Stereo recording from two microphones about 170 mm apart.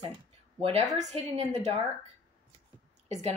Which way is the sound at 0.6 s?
35° right (ahead or behind).